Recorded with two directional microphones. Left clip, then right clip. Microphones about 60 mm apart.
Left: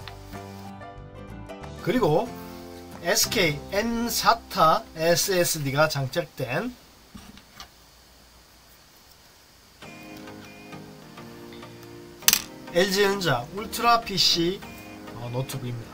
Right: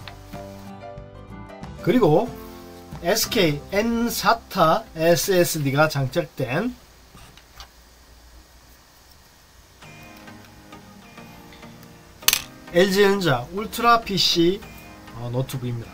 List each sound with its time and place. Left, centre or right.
0.3 s music: centre
1.9 s speech: centre
12.7 s speech: centre